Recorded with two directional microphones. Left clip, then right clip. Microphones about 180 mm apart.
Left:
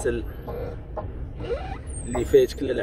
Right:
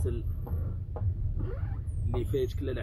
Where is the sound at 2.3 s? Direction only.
Centre (ahead or behind).